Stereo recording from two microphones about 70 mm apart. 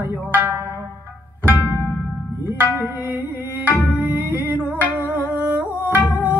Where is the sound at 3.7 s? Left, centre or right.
Right.